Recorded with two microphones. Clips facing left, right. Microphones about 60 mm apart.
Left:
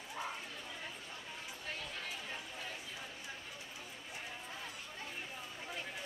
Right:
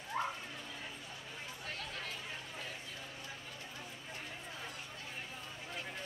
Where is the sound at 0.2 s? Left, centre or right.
Right.